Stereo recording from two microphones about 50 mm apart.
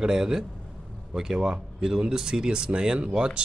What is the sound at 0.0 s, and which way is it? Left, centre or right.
Speech, centre.